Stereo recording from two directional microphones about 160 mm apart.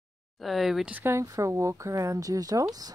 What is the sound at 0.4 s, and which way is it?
Speech, centre (ahead or behind).